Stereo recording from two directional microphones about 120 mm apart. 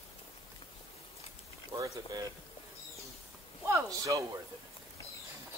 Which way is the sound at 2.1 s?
35° right (ahead or behind).